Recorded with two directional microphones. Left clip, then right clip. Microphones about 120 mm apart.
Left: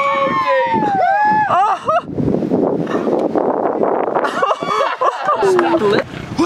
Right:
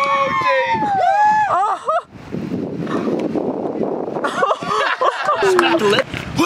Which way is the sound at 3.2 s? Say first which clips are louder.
Left 6 dB; 50° left (ahead or behind).